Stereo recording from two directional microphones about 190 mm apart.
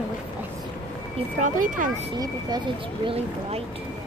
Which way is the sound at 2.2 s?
20° right (ahead or behind).